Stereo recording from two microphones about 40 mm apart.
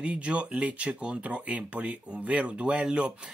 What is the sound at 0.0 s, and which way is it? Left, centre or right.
Speech, right.